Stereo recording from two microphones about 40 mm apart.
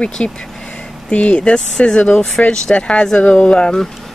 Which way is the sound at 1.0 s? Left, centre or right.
Left.